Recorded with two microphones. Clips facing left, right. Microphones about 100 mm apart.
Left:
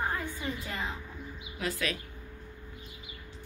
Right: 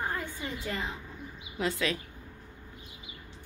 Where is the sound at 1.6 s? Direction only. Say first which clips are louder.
Right 3 dB; 30° right (ahead or behind).